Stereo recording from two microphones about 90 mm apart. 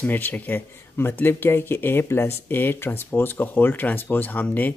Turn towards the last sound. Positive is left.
turn(degrees=20)  # may be behind; listen again after turning